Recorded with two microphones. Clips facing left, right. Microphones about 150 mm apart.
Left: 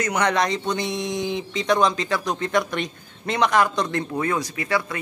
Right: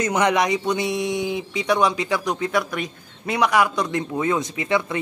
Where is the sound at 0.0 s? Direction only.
20° right (ahead or behind).